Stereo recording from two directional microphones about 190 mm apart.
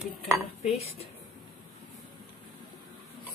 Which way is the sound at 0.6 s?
30° left (ahead or behind).